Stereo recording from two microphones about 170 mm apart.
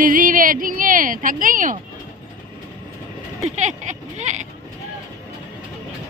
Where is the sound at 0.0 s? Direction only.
50° right (ahead or behind).